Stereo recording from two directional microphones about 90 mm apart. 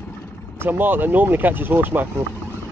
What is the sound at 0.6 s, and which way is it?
Speech, 20° right (ahead or behind).